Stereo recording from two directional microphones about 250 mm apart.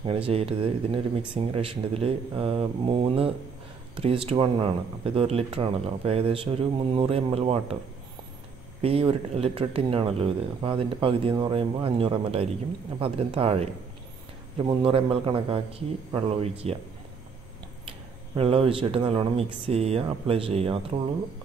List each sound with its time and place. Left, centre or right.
0.3 s speech: right
8.8 s speech: right
17.8 s speech: right